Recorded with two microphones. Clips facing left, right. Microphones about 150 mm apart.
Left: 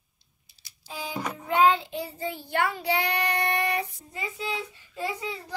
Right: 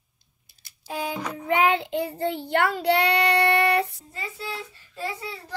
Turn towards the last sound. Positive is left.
turn(degrees=15)  # may be behind; listen again after turning